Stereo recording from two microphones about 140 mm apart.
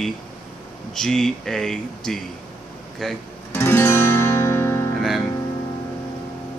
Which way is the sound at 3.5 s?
15° left (ahead or behind).